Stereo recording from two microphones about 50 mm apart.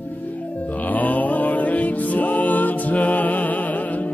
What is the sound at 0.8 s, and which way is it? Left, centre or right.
Music, left.